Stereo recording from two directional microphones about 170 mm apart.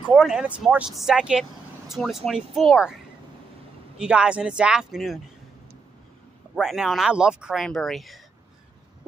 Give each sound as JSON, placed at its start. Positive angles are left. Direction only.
{"t": 0.1, "sound": "speech", "side_deg": 0}
{"t": 4.0, "sound": "speech", "side_deg": -5}
{"t": 6.5, "sound": "speech", "side_deg": 0}